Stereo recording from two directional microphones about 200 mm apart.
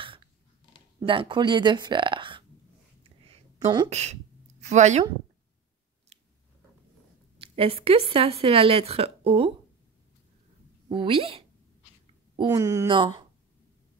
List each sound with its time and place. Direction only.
1.0 s a woman's voice: 25° right (ahead or behind)
3.0 s a sound: 30° right (ahead or behind)
6.1 s chewing: 30° right (ahead or behind)
7.3 s a woman's voice: 25° right (ahead or behind)
10.9 s a woman's voice: 25° right (ahead or behind)